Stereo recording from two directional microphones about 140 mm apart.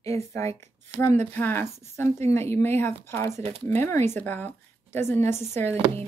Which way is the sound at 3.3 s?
50° right (ahead or behind).